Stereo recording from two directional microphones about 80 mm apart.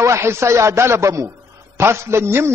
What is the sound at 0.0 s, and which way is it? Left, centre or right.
A man's voice, right.